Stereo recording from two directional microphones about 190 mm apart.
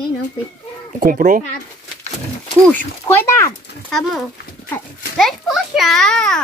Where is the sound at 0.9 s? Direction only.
45° right (ahead or behind).